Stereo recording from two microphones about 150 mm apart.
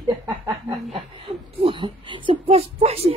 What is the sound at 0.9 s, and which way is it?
Speech, 40° right (ahead or behind).